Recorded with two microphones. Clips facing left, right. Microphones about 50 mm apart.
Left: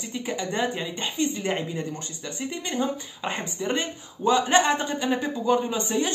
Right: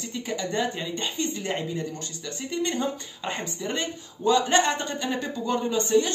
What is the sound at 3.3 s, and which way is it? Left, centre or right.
A woman's voice, centre.